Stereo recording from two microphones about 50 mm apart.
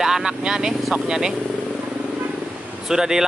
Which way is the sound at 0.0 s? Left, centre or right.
Centre.